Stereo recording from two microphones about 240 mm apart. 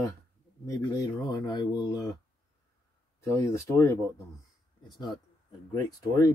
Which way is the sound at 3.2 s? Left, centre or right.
Centre.